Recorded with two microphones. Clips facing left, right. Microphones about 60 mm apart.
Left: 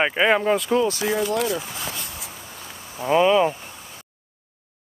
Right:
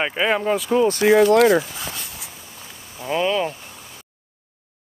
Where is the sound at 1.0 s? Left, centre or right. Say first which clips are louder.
Right 9 dB; right.